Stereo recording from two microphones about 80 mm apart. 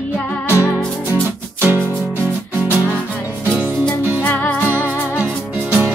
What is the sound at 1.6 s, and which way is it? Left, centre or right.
Music, right.